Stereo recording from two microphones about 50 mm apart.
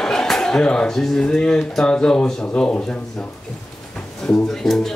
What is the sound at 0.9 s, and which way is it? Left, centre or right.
A man's voice, centre.